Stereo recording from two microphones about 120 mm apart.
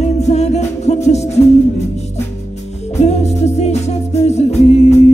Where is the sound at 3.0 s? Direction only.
65° left (ahead or behind).